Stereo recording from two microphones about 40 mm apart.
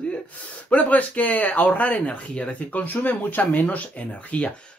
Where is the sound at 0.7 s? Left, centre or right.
Left.